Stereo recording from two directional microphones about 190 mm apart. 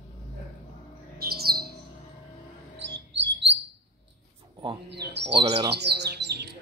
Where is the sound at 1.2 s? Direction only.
55° right (ahead or behind).